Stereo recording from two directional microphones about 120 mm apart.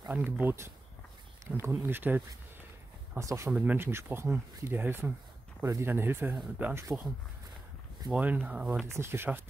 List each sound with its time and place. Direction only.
0.1 s speech: 15° right (ahead or behind)
8.1 s speech: 10° right (ahead or behind)
8.9 s speech: 20° right (ahead or behind)